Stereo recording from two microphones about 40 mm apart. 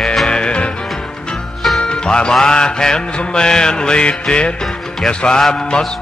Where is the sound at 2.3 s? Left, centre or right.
Centre.